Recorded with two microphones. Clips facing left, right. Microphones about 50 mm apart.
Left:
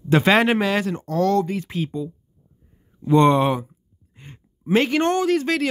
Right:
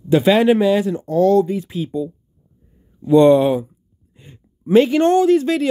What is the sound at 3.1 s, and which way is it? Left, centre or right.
Speech, left.